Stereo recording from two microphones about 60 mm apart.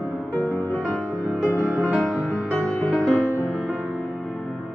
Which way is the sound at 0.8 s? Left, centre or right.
Centre.